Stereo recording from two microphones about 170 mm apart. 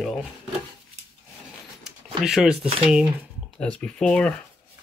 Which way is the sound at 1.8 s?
Centre (ahead or behind).